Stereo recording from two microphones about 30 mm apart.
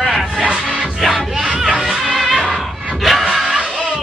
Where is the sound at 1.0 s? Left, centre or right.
Centre.